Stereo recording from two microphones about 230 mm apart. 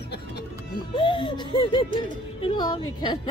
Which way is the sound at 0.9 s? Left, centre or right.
Left.